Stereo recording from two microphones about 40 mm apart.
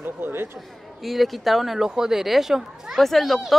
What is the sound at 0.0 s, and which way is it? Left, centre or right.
Speech, right.